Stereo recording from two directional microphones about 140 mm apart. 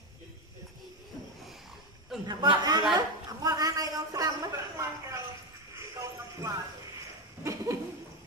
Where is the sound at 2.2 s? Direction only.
30° right (ahead or behind).